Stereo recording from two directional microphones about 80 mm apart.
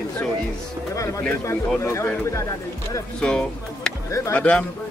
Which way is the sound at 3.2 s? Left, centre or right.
Centre.